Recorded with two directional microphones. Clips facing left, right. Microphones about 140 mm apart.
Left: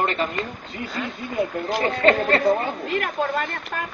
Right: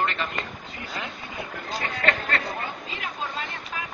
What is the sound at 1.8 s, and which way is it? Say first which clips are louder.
Speech: left 9 dB; 30° left (ahead or behind).